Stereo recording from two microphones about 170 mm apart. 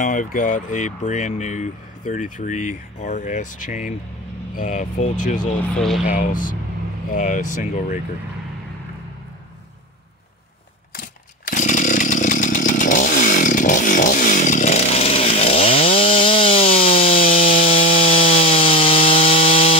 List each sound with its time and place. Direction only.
0.0 s speech: 50° left (ahead or behind)
5.8 s speech: centre (ahead or behind)
6.1 s speech: 50° left (ahead or behind)
11.0 s chainsaw: 50° left (ahead or behind); by 19.8 s 35° left (ahead or behind)